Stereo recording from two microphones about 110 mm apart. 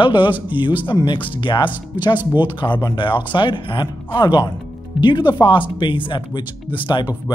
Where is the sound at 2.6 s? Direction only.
45° left (ahead or behind).